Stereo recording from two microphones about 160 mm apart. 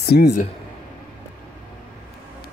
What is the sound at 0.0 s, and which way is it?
Speech, 90° left.